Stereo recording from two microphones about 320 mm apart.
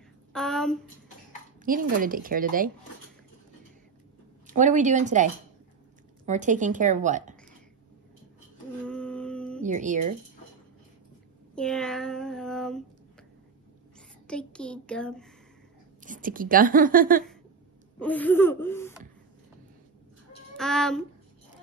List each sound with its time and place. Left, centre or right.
0.3 s speech: centre
1.6 s speech: right
4.5 s speech: right
8.8 s a sound: centre
9.7 s speech: right
11.5 s child singing: centre
14.2 s speech: centre
16.0 s speech: right
17.9 s speech: centre
20.5 s a child's voice: centre